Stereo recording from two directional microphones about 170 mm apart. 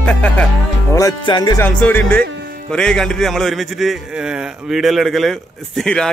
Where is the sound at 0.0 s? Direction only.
5° left (ahead or behind).